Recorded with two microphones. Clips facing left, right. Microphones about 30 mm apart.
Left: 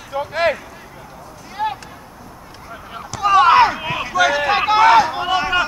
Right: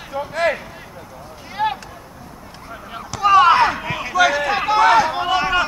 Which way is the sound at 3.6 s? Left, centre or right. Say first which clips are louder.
Left 1 dB; centre.